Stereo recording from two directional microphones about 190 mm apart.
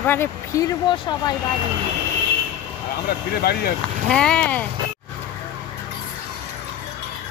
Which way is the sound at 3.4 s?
55° left (ahead or behind).